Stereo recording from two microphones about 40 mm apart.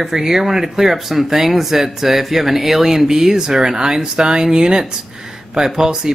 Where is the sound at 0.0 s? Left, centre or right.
Centre.